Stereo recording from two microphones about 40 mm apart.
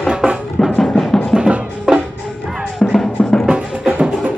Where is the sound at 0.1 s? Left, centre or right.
Right.